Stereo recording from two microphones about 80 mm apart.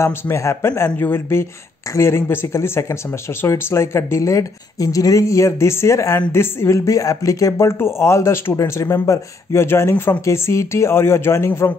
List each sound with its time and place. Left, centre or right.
0.0 s speech: left